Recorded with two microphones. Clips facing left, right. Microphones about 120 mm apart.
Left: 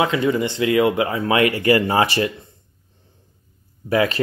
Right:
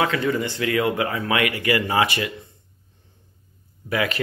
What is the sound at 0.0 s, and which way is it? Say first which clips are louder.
Speech: left 3 dB; 20° left (ahead or behind).